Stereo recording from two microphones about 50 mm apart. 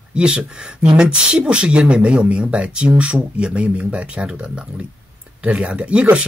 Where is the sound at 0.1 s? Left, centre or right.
Centre.